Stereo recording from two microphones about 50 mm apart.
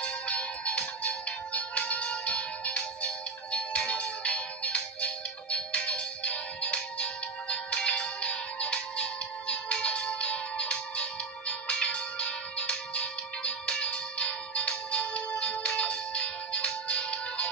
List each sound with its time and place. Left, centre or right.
0.0 s music: left